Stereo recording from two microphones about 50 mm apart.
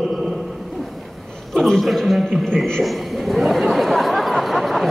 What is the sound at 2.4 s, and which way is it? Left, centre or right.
Speech, centre.